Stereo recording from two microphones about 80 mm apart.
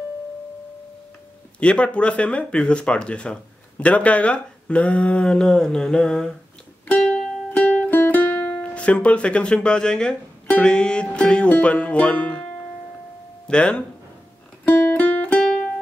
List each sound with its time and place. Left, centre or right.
1.6 s speech: centre
7.0 s music: centre
7.5 s music: left
10.6 s speech: centre
13.5 s speech: centre
14.6 s music: left